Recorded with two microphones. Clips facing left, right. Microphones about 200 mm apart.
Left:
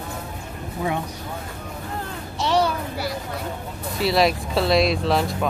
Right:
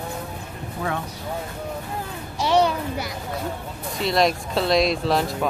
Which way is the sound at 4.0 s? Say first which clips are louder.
Left 1 dB; 5° left (ahead or behind).